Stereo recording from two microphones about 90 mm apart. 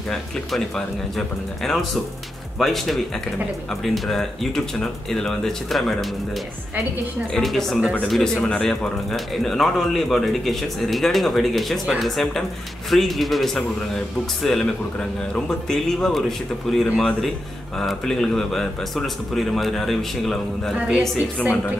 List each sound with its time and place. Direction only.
0.1 s speech: 5° left (ahead or behind)
7.3 s speech: 5° left (ahead or behind)